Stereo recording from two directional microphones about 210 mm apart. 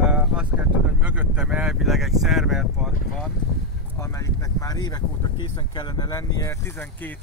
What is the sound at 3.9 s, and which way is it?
Speech, 15° left (ahead or behind).